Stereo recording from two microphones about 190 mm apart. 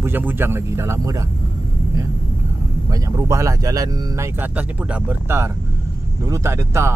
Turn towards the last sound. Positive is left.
turn(degrees=-15)  # may be behind; listen again after turning